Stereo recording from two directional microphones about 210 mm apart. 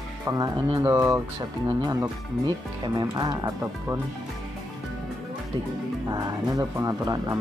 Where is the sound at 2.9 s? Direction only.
20° right (ahead or behind).